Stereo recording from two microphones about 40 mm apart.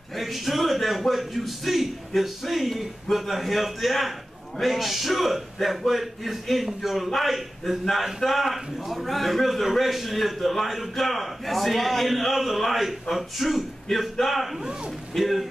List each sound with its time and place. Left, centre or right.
0.1 s a man's voice: centre
14.6 s a man's voice: centre
15.1 s a man's voice: centre